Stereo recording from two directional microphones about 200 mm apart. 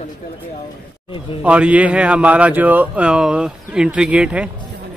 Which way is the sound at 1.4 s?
5° right (ahead or behind).